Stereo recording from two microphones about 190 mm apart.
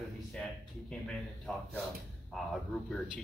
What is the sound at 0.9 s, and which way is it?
Speech, centre (ahead or behind).